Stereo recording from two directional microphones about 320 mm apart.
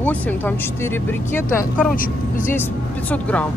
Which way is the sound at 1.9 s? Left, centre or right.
Left.